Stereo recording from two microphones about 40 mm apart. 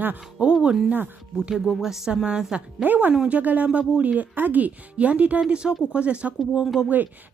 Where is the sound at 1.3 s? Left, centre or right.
Centre.